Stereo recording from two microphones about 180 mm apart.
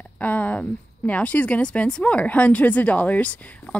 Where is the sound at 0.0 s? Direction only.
10° left (ahead or behind).